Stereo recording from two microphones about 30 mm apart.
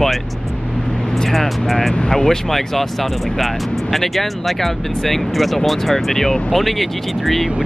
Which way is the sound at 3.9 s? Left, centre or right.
Centre.